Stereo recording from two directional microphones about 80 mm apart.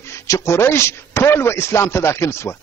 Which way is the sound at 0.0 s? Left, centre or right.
Left.